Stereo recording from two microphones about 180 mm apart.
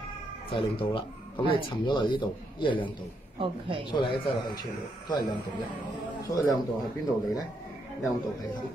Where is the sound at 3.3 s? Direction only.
30° right (ahead or behind).